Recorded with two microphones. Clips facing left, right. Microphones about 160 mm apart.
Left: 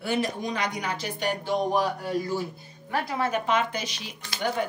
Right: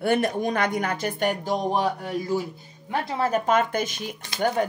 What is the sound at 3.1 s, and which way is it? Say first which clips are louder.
A woman's voice: right 4 dB; 40° right (ahead or behind).